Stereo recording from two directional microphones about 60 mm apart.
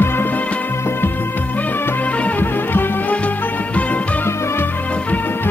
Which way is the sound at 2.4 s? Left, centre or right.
Left.